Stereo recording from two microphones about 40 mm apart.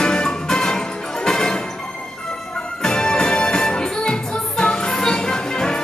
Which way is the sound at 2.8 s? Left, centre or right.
Centre.